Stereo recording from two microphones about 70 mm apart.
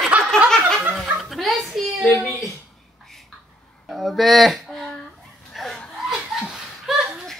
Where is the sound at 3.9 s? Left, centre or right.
Centre.